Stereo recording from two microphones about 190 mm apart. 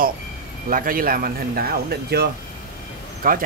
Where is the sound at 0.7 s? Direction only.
50° right (ahead or behind).